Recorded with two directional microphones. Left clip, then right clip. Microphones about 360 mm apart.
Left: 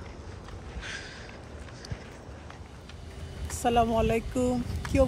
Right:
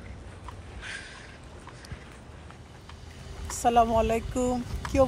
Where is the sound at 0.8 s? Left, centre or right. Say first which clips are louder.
Even; centre.